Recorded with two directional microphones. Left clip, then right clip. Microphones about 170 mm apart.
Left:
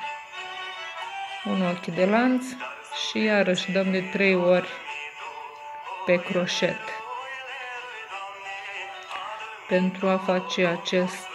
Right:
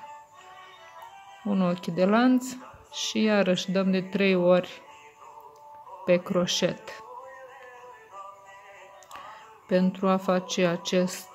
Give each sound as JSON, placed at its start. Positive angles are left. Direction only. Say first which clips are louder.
{"t": 1.6, "sound": "speech", "louder": "left 1 dB", "side_deg": -40}
{"t": 6.0, "sound": "speech", "louder": "even", "side_deg": -40}
{"t": 9.7, "sound": "speech", "louder": "left 1 dB", "side_deg": -35}